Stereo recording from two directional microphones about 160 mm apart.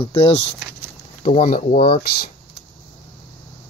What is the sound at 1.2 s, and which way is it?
Speech, 55° left (ahead or behind).